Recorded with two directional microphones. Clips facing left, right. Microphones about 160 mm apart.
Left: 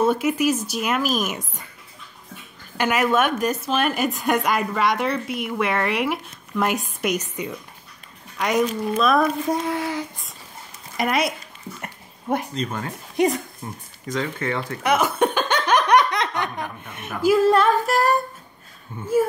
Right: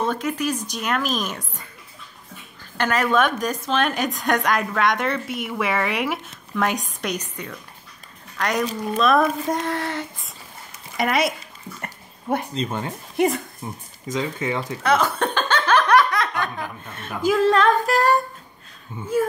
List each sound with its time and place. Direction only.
0.0 s a woman's voice: 10° left (ahead or behind)
2.8 s a woman's voice: 10° left (ahead or behind)
11.8 s dog: centre (ahead or behind)
12.6 s speech: 20° right (ahead or behind)
13.1 s speech: centre (ahead or behind)
13.6 s speech: 15° right (ahead or behind)
14.8 s laughter: 15° left (ahead or behind)
16.8 s a sound: 15° left (ahead or behind)
17.2 s a woman's voice: 5° left (ahead or behind)